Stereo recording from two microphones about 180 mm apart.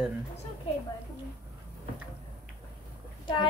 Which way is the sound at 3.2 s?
25° left (ahead or behind).